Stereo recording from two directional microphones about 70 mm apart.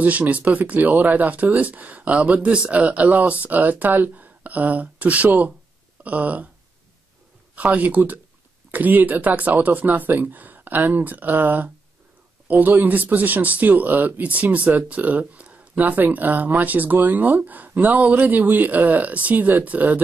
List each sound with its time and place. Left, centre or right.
0.0 s speech: right
7.5 s speech: right